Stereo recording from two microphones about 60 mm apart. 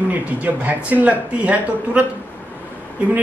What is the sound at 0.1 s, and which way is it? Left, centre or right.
Speech, right.